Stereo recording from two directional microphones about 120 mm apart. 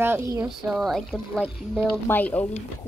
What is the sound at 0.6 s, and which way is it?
Speech, centre (ahead or behind).